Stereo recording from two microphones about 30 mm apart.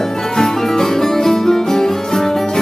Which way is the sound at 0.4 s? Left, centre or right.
Centre.